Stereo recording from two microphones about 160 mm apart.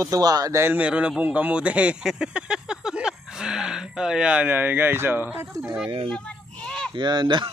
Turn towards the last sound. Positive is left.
turn(degrees=-30)  # may be behind; listen again after turning